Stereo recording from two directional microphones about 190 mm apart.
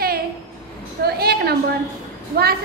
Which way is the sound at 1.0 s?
55° right (ahead or behind).